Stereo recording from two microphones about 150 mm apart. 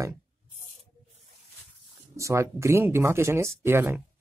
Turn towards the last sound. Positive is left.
turn(degrees=-15)  # may be behind; listen again after turning